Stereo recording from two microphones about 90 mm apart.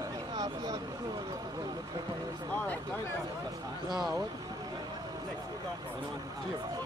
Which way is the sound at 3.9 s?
Centre (ahead or behind).